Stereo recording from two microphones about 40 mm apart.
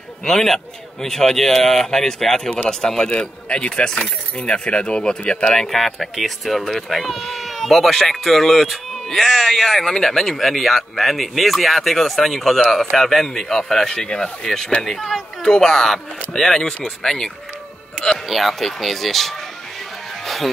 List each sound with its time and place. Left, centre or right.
0.2 s speech: centre
3.1 s speech: left
5.5 s speech: centre
18.3 s speech: centre
20.2 s music: centre